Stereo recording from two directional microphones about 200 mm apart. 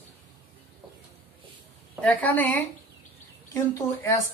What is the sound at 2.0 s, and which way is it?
A woman's voice, 10° left (ahead or behind).